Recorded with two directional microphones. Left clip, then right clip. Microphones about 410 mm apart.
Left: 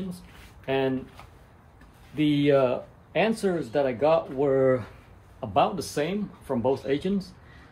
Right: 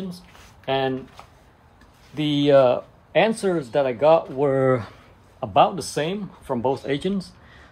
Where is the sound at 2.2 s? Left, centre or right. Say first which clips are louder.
Right 6 dB; centre.